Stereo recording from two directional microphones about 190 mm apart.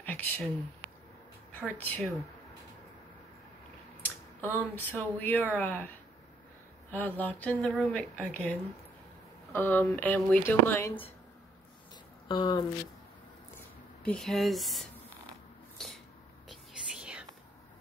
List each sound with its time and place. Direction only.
0.0 s a sound: 10° left (ahead or behind)
1.5 s speech: 10° left (ahead or behind)
4.0 s speech: 10° left (ahead or behind)
6.9 s speech: 10° left (ahead or behind)
12.3 s speech: 25° left (ahead or behind)
14.0 s speech: 5° left (ahead or behind)
16.4 s whispering: 5° right (ahead or behind)